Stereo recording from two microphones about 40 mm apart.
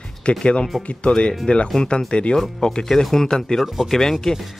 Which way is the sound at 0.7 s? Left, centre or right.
Centre.